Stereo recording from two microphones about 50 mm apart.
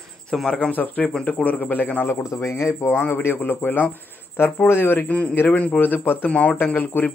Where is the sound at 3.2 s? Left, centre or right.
Left.